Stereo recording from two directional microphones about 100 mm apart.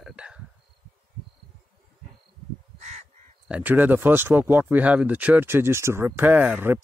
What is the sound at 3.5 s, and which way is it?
Speech, 20° right (ahead or behind).